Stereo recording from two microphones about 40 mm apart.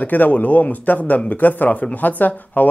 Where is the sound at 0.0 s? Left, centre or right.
Left.